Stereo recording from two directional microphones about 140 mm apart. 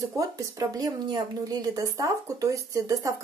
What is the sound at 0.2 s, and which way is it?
Speech, 25° right (ahead or behind).